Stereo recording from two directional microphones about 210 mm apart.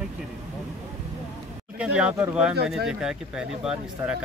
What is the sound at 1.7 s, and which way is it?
Speech, 5° right (ahead or behind).